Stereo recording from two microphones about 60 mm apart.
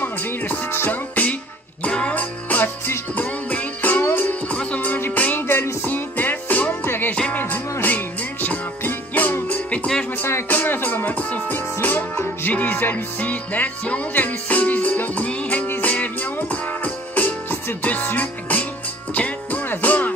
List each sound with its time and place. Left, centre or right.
0.0 s music: left
1.8 s music: left